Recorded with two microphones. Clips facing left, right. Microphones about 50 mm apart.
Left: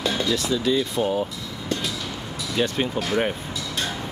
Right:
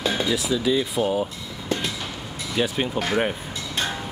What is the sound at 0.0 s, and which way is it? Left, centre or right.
Speech, centre.